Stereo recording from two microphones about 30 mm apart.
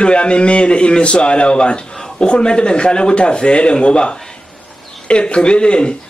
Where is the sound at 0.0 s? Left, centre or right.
Left.